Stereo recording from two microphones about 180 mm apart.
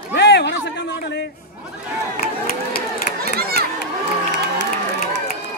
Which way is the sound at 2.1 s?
55° left (ahead or behind).